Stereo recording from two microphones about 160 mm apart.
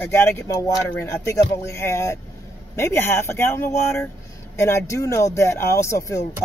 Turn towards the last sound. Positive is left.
turn(degrees=20)  # may be behind; listen again after turning